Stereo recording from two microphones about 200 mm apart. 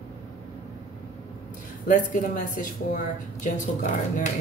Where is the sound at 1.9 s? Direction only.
40° left (ahead or behind).